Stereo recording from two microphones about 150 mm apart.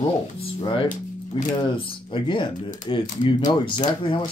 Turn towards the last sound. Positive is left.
turn(degrees=30)  # may be behind; listen again after turning